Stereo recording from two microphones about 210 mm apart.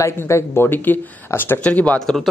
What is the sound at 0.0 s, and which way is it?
Speech, 15° left (ahead or behind).